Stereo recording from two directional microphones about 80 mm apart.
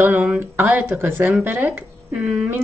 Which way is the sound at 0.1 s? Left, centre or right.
Right.